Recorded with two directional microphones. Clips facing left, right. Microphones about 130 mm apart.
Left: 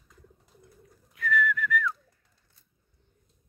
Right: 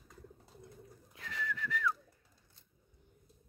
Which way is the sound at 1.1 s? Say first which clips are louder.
Left 14 dB; 30° right (ahead or behind).